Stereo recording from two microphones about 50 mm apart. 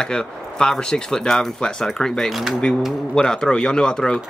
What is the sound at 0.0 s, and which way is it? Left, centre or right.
Speech, centre.